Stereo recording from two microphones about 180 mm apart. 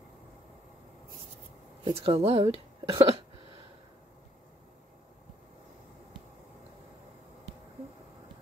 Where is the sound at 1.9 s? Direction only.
35° right (ahead or behind).